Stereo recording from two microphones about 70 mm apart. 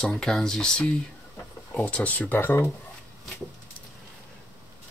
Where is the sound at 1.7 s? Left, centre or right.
Left.